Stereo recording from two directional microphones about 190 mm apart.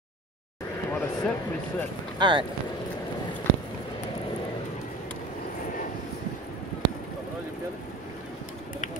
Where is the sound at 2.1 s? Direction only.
25° right (ahead or behind).